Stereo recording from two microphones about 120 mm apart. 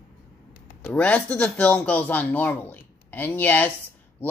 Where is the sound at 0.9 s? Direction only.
10° left (ahead or behind).